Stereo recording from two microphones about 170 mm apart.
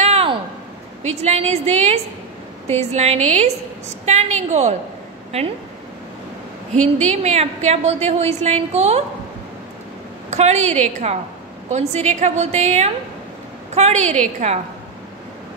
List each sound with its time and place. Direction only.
0.0 s a sound: 35° right (ahead or behind)
1.0 s a woman's voice: 40° right (ahead or behind)
6.8 s a woman's voice: 40° right (ahead or behind)
10.3 s a woman's voice: 40° right (ahead or behind)